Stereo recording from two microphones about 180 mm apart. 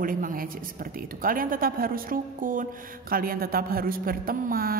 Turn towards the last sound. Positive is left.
turn(degrees=-55)  # may be behind; listen again after turning